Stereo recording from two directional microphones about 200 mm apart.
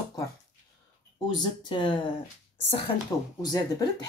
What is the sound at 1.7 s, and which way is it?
Speech, 25° left (ahead or behind).